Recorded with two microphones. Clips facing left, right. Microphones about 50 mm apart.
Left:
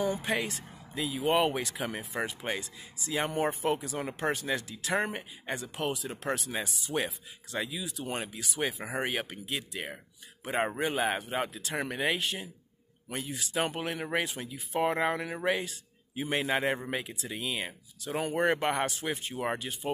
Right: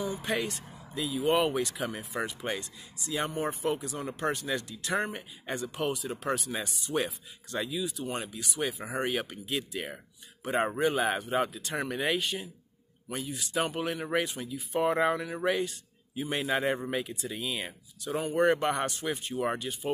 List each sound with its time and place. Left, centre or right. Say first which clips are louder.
0.2 s speech: even; centre
3.3 s speech: left 5 dB; left
3.6 s speech: left 1 dB; centre
8.0 s speech: right 1 dB; centre
13.4 s speech: right 1 dB; centre